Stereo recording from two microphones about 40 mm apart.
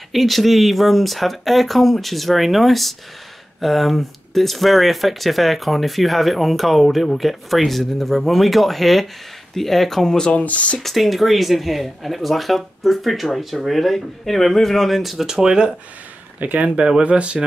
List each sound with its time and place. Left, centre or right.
0.1 s speech: centre
10.3 s speech: left
10.8 s speech: centre
16.3 s speech: right
16.6 s speech: right